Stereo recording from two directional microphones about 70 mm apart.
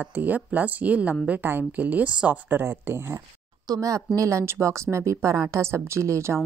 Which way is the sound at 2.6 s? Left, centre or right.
Right.